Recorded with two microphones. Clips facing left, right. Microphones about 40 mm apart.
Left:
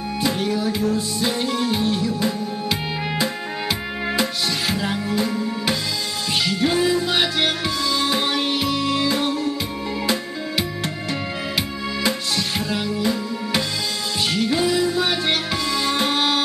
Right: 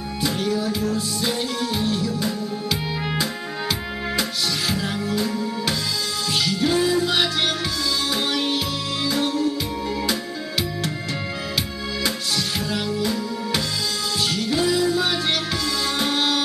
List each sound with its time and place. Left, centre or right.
0.2 s music: left
12.0 s music: centre